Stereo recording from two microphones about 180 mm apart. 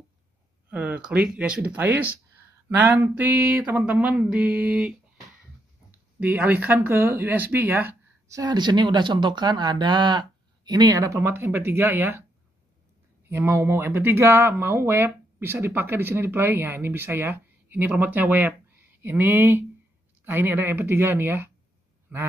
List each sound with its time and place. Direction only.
0.7 s speech: 10° right (ahead or behind)
6.1 s speech: 10° right (ahead or behind)
13.3 s speech: 15° right (ahead or behind)